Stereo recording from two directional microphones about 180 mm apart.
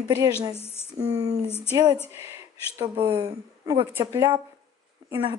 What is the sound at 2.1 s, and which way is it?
Speech, 15° right (ahead or behind).